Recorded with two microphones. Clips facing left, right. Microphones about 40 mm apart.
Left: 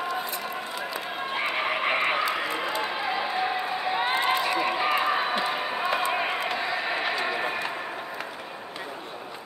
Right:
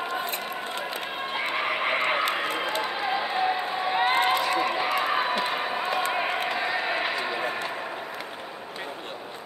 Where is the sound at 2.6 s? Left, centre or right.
Right.